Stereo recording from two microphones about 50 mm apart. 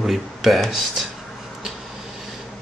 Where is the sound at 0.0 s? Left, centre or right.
Centre.